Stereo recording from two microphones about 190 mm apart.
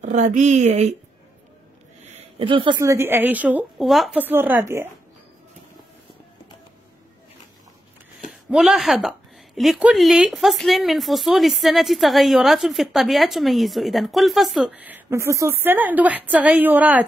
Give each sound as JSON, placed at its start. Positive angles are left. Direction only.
{"t": 0.0, "sound": "speech", "side_deg": -40}
{"t": 2.0, "sound": "a sound", "side_deg": -30}
{"t": 2.8, "sound": "a woman's voice", "side_deg": -15}
{"t": 8.3, "sound": "a woman's voice", "side_deg": 0}